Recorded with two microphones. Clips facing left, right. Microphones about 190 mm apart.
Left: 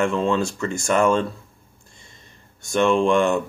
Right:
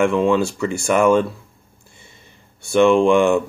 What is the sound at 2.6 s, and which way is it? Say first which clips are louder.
Speech: right 5 dB; 10° right (ahead or behind).